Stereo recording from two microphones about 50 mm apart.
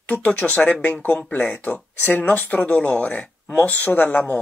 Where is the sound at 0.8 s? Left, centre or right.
Left.